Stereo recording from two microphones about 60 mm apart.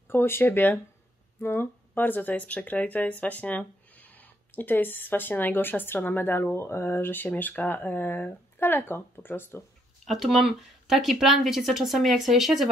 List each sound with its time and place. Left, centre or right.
0.1 s speech: left
10.0 s speech: centre